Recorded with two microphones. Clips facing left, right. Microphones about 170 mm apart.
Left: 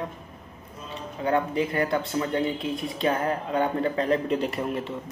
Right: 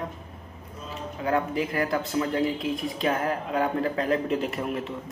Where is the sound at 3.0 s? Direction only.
30° left (ahead or behind).